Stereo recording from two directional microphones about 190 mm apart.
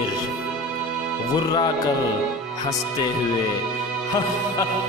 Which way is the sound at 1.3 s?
20° left (ahead or behind).